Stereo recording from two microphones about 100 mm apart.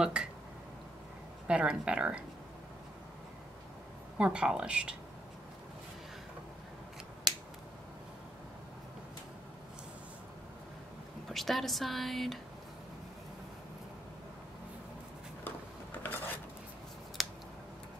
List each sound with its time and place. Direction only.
0.0 s speech: 10° right (ahead or behind)
1.5 s speech: 10° right (ahead or behind)
4.2 s speech: 10° right (ahead or behind)
11.2 s speech: centre (ahead or behind)
16.0 s dishes: 20° left (ahead or behind)
17.2 s scissors: centre (ahead or behind)